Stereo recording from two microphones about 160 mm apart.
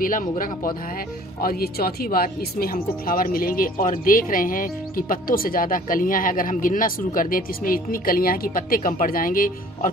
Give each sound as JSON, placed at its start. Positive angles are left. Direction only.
{"t": 0.0, "sound": "speech", "side_deg": 60}
{"t": 1.4, "sound": "speech", "side_deg": 70}